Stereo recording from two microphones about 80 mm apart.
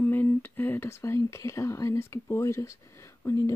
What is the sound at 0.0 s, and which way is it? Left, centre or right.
Speech, left.